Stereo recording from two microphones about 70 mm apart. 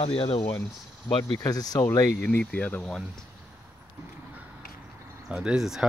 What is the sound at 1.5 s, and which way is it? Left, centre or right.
Speech, left.